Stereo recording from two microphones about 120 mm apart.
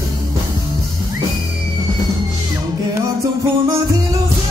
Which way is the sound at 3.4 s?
25° right (ahead or behind).